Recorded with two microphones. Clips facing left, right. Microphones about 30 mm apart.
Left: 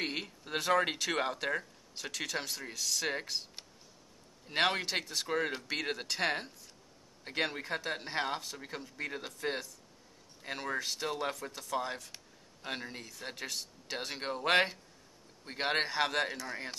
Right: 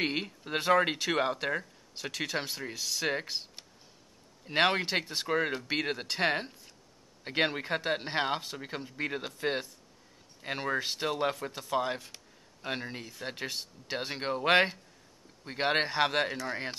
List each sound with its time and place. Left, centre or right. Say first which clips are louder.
0.0 s speech: right 5 dB; centre
4.5 s speech: right 4 dB; centre
16.4 s speech: right 5 dB; right